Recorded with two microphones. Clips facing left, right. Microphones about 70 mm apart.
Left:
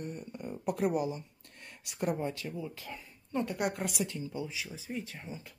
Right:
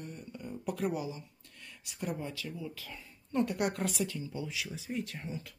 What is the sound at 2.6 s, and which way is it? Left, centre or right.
Speech, left.